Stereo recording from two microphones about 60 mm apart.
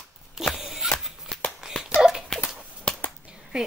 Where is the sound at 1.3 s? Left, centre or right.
Centre.